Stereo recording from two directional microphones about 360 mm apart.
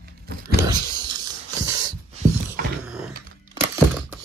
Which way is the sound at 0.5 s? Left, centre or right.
Centre.